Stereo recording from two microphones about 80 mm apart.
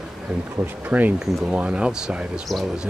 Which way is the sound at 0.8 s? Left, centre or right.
Right.